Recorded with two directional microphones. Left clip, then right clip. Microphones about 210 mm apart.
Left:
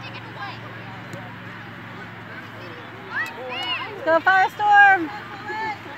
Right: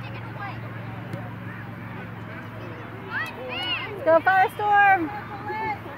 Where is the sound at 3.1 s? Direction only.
55° left (ahead or behind).